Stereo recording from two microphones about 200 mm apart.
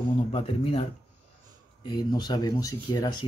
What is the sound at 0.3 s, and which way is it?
Speech, 30° left (ahead or behind).